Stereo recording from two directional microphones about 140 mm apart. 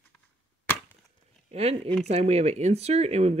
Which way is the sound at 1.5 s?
50° right (ahead or behind).